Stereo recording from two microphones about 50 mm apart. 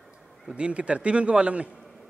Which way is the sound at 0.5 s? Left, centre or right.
Right.